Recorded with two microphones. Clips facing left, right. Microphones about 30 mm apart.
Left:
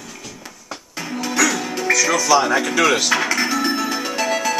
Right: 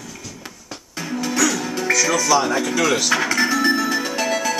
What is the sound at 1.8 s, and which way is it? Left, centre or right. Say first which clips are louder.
Speech: left 1 dB; centre.